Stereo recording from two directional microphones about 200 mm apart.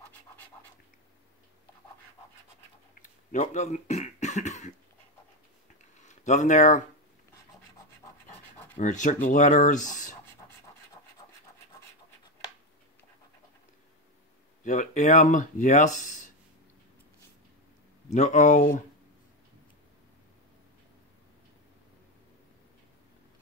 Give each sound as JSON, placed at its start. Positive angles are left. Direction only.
{"t": 3.0, "sound": "speech", "side_deg": 40}
{"t": 5.9, "sound": "a sound", "side_deg": 35}
{"t": 8.7, "sound": "speech", "side_deg": 40}
{"t": 14.6, "sound": "speech", "side_deg": 35}
{"t": 18.1, "sound": "speech", "side_deg": 35}